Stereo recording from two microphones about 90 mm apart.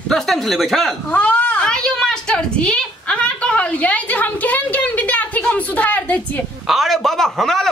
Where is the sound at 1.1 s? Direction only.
15° left (ahead or behind).